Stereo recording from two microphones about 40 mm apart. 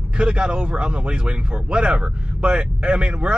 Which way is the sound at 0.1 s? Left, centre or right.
Right.